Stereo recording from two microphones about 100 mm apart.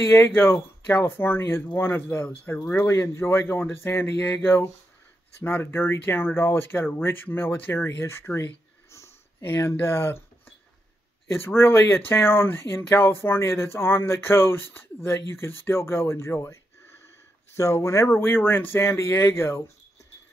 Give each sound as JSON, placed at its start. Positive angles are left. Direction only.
{"t": 0.0, "sound": "speech", "side_deg": 25}
{"t": 11.4, "sound": "speech", "side_deg": 25}
{"t": 17.6, "sound": "speech", "side_deg": 30}